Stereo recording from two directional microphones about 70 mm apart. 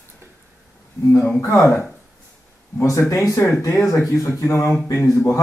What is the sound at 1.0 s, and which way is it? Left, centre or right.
Speech, left.